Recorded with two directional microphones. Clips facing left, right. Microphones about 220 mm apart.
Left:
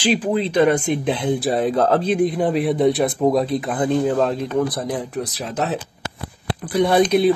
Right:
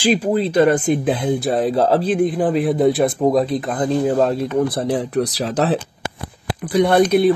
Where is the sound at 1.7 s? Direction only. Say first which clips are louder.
Right 1 dB; 35° right (ahead or behind).